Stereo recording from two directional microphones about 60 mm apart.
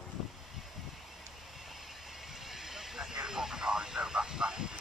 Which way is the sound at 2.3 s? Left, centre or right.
Centre.